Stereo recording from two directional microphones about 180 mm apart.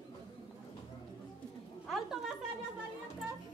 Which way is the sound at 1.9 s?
Centre (ahead or behind).